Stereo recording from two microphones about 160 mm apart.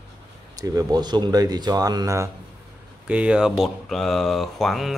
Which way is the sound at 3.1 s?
5° right (ahead or behind).